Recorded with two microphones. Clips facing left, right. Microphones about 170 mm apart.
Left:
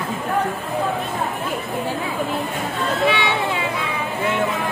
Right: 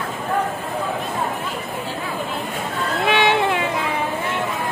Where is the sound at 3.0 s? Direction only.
55° right (ahead or behind).